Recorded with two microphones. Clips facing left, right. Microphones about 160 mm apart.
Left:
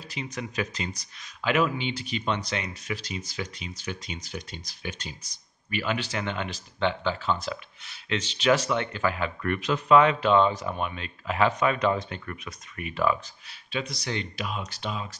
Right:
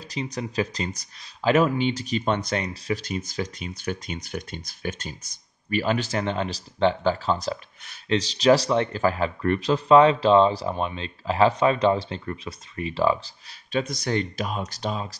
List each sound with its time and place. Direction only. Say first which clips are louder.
0.0 s speech: right 4 dB; 40° right (ahead or behind)